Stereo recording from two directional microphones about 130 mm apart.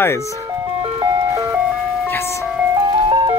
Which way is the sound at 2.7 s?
40° right (ahead or behind).